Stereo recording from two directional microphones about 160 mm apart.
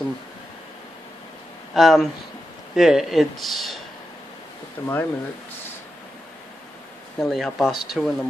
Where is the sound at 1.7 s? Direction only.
Centre (ahead or behind).